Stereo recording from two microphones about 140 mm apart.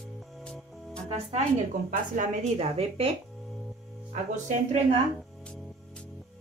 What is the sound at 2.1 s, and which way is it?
A woman's voice, 60° right (ahead or behind).